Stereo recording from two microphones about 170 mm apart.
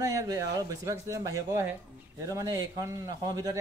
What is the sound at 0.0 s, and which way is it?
Speech, 20° right (ahead or behind).